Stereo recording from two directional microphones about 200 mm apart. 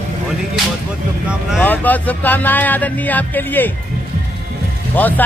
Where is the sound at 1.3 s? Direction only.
Centre (ahead or behind).